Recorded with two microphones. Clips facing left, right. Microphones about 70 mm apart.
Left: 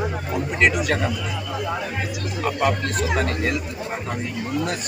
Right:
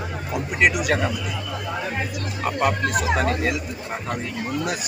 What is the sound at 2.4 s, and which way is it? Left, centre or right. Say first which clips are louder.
Speech: even; centre.